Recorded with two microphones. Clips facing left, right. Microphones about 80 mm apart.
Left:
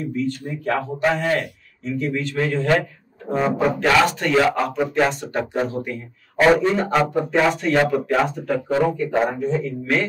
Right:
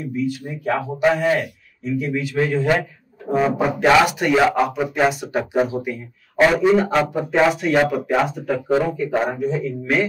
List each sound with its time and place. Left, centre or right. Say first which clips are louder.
0.0 s a man's voice: even; centre